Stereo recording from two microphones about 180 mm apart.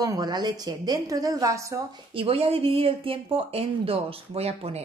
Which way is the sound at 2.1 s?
30° right (ahead or behind).